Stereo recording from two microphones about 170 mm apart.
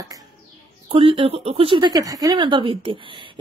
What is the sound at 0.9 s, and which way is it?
Speech, 30° right (ahead or behind).